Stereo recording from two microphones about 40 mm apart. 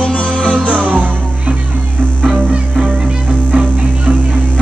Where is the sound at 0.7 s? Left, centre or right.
Right.